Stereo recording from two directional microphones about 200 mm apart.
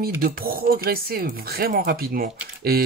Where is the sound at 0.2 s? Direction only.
50° right (ahead or behind).